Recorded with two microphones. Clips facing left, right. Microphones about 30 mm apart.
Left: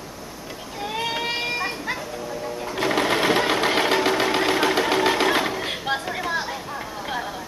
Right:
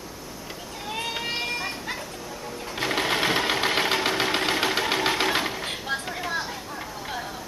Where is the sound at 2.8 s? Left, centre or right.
Centre.